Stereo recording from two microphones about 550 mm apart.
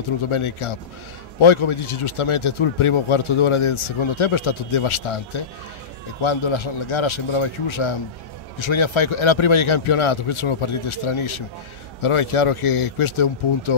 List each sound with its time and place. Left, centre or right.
0.3 s a man's voice: left
6.2 s a man's voice: left